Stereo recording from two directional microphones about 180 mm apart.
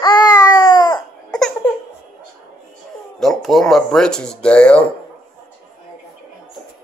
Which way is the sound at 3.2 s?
Centre (ahead or behind).